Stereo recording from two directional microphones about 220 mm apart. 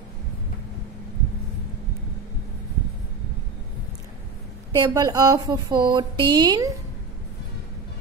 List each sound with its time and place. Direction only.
4.7 s speech: 15° right (ahead or behind)